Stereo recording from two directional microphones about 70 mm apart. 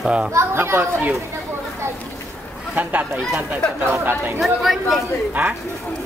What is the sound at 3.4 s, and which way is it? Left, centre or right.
Speech, right.